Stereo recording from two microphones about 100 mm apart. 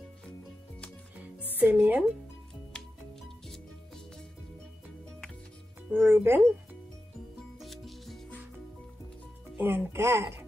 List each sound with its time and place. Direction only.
1.5 s speech: 15° right (ahead or behind)
2.7 s music: 5° left (ahead or behind)
5.9 s speech: 20° right (ahead or behind)
7.5 s music: centre (ahead or behind)
9.6 s speech: 20° right (ahead or behind)